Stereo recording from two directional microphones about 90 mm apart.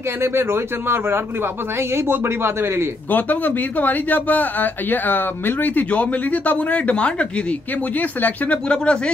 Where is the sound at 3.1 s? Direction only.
20° left (ahead or behind).